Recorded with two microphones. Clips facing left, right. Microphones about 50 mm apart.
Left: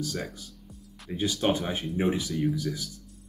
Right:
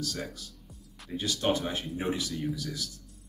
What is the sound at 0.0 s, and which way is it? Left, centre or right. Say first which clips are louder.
Speech: left 3 dB; centre.